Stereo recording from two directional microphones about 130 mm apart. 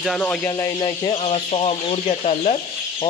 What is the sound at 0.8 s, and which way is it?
Speech, 40° left (ahead or behind).